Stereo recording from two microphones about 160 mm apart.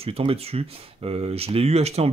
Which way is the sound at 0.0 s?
35° right (ahead or behind).